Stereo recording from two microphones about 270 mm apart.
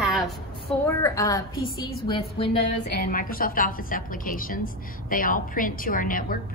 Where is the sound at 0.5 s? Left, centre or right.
Centre.